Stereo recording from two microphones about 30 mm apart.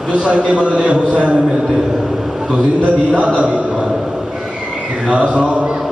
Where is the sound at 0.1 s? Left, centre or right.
Right.